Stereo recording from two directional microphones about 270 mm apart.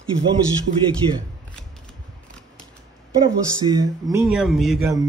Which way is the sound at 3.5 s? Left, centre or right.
Centre.